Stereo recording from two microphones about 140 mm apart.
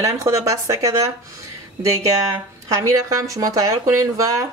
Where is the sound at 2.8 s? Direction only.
25° right (ahead or behind).